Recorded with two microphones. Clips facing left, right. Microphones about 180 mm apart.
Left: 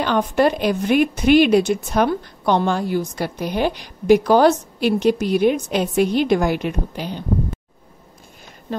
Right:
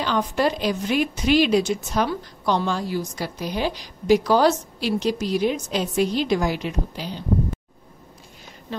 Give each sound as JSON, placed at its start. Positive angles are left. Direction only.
{"t": 0.0, "sound": "a woman's voice", "side_deg": 55}